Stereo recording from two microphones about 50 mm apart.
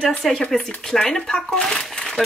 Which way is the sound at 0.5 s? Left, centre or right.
Centre.